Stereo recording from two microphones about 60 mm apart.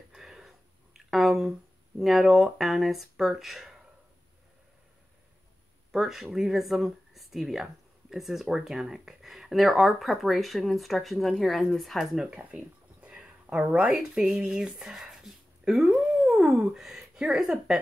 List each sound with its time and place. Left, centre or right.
0.1 s sniff: centre
0.9 s a sound: centre
2.0 s speech: centre
5.9 s speech: centre
12.3 s a sound: centre
16.7 s speech: centre